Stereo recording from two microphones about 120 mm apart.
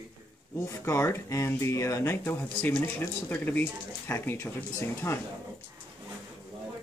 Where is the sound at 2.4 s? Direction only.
10° left (ahead or behind).